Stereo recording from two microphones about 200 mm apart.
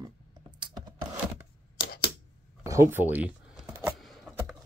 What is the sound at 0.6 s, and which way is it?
Computer keyboard, 25° right (ahead or behind).